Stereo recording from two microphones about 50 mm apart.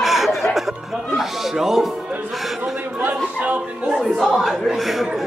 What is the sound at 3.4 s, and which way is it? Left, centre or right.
Speech, right.